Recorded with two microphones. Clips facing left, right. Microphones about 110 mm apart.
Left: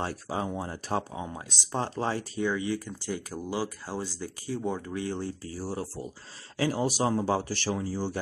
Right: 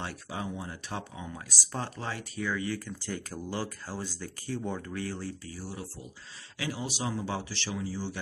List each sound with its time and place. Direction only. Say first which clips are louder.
0.0 s speech: left 5 dB; 40° left (ahead or behind)